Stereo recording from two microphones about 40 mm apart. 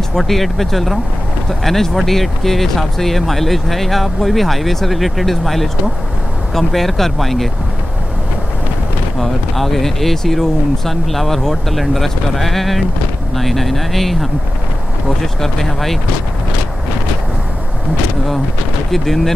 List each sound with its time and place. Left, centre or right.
0.1 s speech: centre
9.2 s speech: centre
18.9 s speech: centre